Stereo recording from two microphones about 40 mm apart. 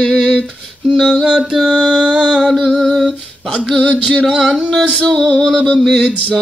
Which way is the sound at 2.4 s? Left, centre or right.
Centre.